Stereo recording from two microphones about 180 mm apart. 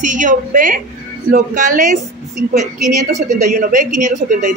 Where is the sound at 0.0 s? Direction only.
45° right (ahead or behind).